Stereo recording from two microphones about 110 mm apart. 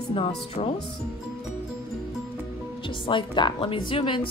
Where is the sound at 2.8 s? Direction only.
50° left (ahead or behind).